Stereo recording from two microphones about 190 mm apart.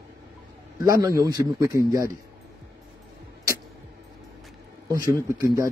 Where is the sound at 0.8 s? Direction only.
15° right (ahead or behind).